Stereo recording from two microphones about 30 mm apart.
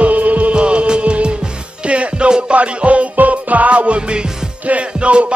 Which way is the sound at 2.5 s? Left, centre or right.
Right.